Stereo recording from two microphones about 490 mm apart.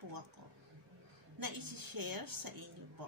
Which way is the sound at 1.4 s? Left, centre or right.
Right.